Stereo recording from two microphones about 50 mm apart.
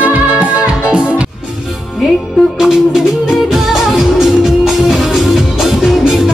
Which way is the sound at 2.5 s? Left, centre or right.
Centre.